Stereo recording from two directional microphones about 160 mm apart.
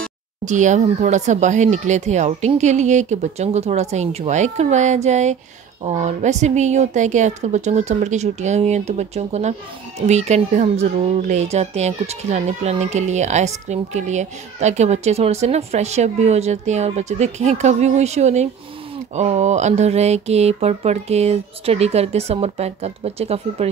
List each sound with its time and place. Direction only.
0.5 s a woman's voice: 50° right (ahead or behind)